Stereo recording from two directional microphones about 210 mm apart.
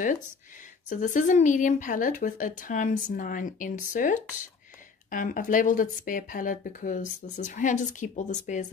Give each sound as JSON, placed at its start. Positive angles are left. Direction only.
{"t": 0.8, "sound": "speech", "side_deg": 35}